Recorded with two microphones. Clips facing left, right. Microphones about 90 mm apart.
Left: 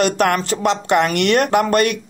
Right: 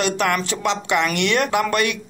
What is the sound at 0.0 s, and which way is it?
Speech, 45° left (ahead or behind).